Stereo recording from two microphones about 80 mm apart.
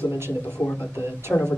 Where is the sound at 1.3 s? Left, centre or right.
Centre.